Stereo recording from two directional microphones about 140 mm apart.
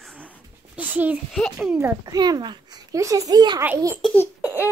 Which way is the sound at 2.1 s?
30° right (ahead or behind).